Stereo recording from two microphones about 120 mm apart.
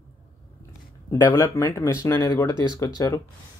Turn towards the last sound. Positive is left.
turn(degrees=30)  # may be behind; listen again after turning